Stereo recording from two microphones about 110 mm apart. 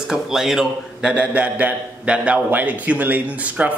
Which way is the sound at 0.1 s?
5° right (ahead or behind).